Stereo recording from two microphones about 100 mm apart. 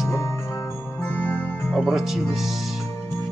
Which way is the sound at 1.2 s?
15° left (ahead or behind).